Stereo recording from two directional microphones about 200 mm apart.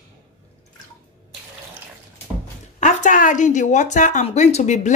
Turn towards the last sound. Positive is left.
turn(degrees=35)  # may be behind; listen again after turning